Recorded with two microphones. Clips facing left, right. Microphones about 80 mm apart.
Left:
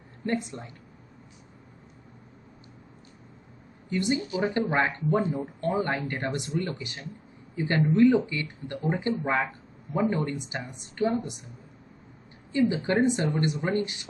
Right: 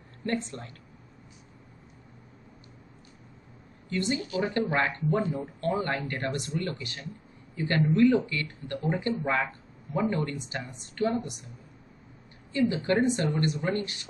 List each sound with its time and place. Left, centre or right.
0.2 s speech: centre
3.9 s speech: centre
12.5 s speech: left